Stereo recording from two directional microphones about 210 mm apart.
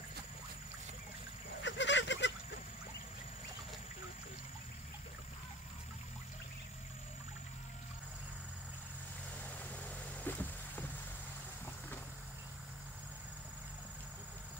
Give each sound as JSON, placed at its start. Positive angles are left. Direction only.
{"t": 1.6, "sound": "goose", "side_deg": 60}
{"t": 10.2, "sound": "vehicle", "side_deg": 10}